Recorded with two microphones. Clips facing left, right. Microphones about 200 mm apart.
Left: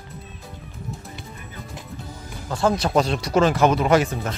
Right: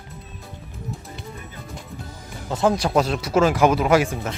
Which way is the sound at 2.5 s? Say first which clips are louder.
Right 1 dB; 15° right (ahead or behind).